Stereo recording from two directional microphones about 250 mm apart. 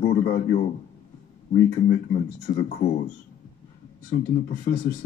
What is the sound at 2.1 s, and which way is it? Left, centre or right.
Speech, left.